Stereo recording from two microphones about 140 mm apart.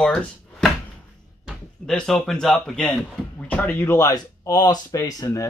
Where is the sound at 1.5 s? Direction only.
5° left (ahead or behind).